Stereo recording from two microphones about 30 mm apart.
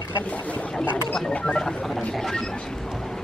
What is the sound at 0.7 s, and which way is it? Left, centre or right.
Speech, left.